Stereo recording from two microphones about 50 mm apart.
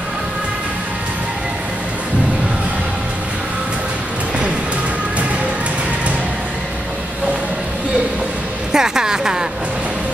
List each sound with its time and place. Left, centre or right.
8.7 s speech: centre